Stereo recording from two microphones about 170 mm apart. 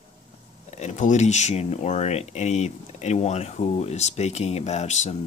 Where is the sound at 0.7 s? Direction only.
45° left (ahead or behind).